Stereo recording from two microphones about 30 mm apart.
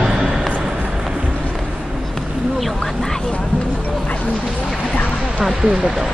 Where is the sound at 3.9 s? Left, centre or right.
Left.